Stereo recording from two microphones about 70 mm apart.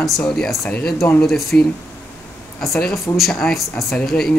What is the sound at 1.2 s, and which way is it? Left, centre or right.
Speech, centre.